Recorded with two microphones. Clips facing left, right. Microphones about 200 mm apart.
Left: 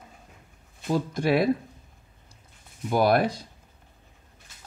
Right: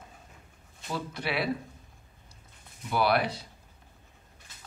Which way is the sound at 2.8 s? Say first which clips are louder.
Left 5 dB; 45° left (ahead or behind).